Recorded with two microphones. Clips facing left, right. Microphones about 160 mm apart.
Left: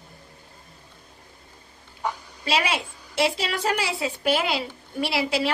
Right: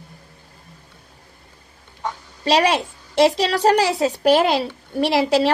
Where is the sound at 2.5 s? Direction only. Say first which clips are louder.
Right 8 dB; 40° right (ahead or behind).